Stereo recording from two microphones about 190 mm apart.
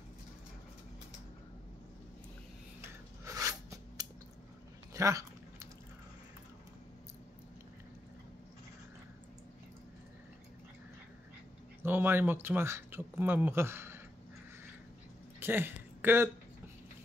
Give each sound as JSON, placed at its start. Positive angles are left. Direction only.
{"t": 2.8, "sound": "scissors", "side_deg": -15}
{"t": 4.9, "sound": "a sound", "side_deg": -15}
{"t": 11.8, "sound": "speech", "side_deg": -10}
{"t": 15.4, "sound": "speech", "side_deg": -10}